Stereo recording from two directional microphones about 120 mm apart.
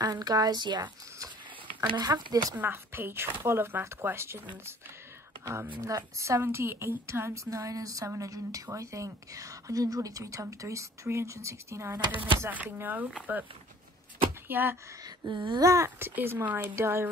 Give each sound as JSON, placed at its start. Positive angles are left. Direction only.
{"t": 0.0, "sound": "speech", "side_deg": -35}
{"t": 2.5, "sound": "a woman's voice", "side_deg": -20}
{"t": 5.4, "sound": "a woman's voice", "side_deg": -20}
{"t": 14.5, "sound": "speech", "side_deg": -15}
{"t": 15.0, "sound": "speech", "side_deg": -40}
{"t": 15.6, "sound": "a woman's voice", "side_deg": -25}